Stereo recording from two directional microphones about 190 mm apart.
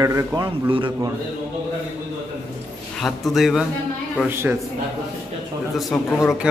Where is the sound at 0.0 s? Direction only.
15° right (ahead or behind).